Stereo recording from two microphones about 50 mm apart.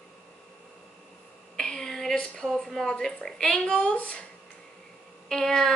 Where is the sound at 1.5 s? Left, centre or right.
Centre.